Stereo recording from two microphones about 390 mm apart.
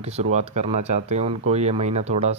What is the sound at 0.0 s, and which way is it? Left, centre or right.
Speech, centre.